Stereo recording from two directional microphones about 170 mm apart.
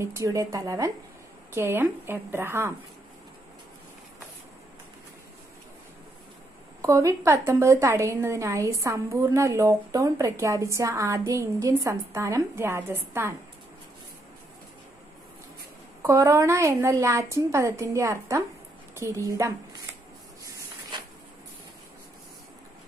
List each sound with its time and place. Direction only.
0.0 s a woman's voice: 15° right (ahead or behind)
6.8 s a woman's voice: 15° right (ahead or behind)
16.0 s a woman's voice: 15° right (ahead or behind)